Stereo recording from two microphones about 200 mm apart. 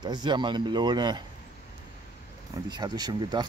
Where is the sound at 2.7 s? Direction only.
20° right (ahead or behind).